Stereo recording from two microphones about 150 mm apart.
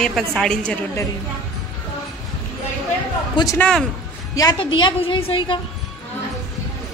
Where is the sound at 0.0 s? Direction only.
Centre (ahead or behind).